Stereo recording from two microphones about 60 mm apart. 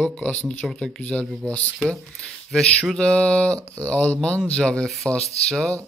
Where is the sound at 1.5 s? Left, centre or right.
Left.